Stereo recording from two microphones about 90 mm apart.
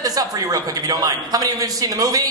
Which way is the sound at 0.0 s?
40° right (ahead or behind).